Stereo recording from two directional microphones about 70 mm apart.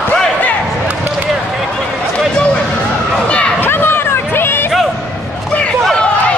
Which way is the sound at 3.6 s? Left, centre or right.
Left.